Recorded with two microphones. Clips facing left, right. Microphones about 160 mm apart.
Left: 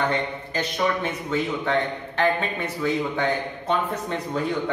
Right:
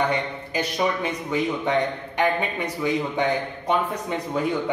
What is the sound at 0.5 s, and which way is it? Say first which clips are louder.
A man's voice: right 1 dB; 10° right (ahead or behind).